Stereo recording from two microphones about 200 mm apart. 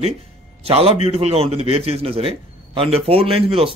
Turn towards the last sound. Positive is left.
turn(degrees=-30)  # may be behind; listen again after turning